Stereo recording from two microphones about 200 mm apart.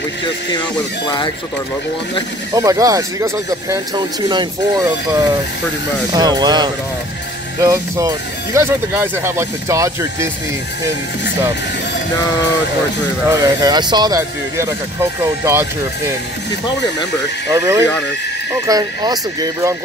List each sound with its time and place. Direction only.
0.2 s speech: 20° left (ahead or behind)
2.5 s speech: 15° right (ahead or behind)
13.3 s speech: 20° right (ahead or behind)
16.6 s speech: 20° left (ahead or behind)
17.5 s speech: 15° right (ahead or behind)